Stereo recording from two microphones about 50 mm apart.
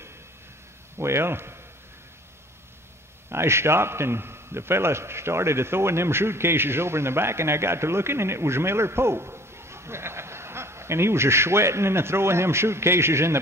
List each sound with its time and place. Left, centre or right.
0.9 s a man's voice: right
3.3 s a man's voice: right